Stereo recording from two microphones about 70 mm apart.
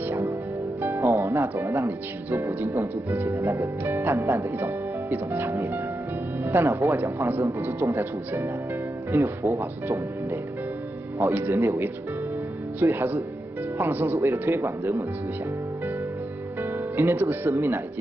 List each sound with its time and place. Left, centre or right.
0.8 s speech: right
3.3 s speech: right
4.0 s speech: right
9.1 s speech: right
11.1 s speech: right
16.7 s speech: right
17.5 s speech: right